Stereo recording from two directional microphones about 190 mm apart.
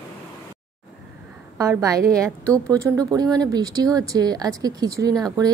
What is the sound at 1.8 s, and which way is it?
A woman's voice, 15° right (ahead or behind).